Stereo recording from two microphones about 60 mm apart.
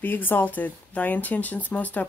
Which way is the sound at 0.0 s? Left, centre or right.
Left.